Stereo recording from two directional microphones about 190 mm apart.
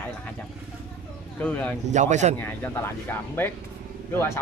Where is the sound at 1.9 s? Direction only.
40° right (ahead or behind).